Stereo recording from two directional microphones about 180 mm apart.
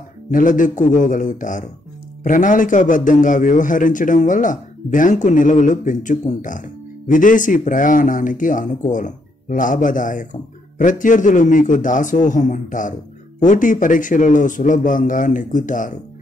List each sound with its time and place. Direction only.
0.3 s a man's voice: 45° left (ahead or behind)